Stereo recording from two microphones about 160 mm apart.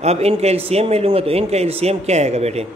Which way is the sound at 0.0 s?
40° right (ahead or behind).